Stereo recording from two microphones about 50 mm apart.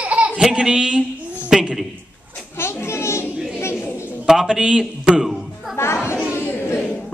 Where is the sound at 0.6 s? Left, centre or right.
Centre.